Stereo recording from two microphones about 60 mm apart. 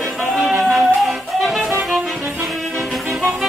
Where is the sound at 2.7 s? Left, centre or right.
Centre.